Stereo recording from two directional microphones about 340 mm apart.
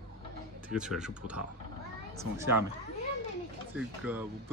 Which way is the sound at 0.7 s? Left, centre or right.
Centre.